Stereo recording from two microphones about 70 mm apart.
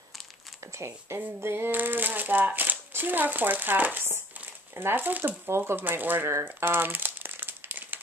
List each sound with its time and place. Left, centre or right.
0.7 s speech: right
6.3 s crumpling: right